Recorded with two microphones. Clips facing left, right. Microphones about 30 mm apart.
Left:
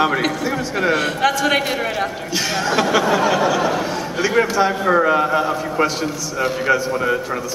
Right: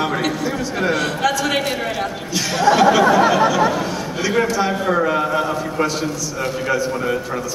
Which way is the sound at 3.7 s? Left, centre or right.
Centre.